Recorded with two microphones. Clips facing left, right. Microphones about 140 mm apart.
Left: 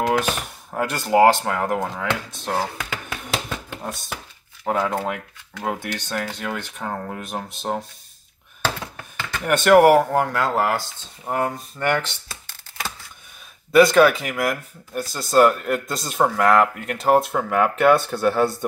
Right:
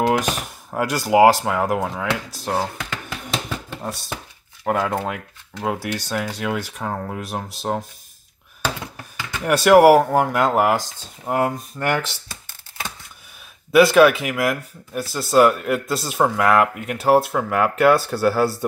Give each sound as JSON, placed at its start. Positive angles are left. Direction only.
{"t": 0.2, "sound": "speech", "side_deg": -10}
{"t": 3.5, "sound": "a sound", "side_deg": 0}
{"t": 4.6, "sound": "speech", "side_deg": 0}
{"t": 8.6, "sound": "a sound", "side_deg": -15}
{"t": 9.4, "sound": "speech", "side_deg": -5}
{"t": 13.7, "sound": "speech", "side_deg": -5}